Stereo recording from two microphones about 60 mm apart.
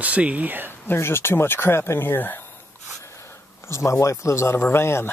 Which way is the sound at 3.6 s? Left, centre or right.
Left.